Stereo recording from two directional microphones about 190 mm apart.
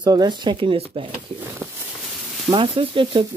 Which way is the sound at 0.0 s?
20° right (ahead or behind).